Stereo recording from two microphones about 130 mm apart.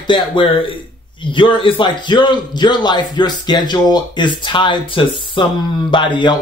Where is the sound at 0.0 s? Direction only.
40° left (ahead or behind).